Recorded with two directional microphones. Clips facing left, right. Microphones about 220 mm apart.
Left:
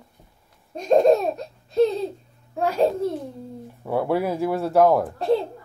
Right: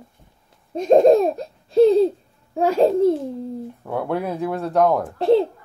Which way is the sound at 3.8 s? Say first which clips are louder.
Left 3 dB; 5° left (ahead or behind).